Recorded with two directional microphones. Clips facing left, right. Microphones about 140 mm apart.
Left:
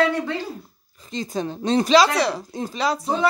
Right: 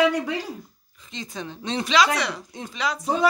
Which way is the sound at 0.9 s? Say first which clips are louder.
Left 8 dB; 40° left (ahead or behind).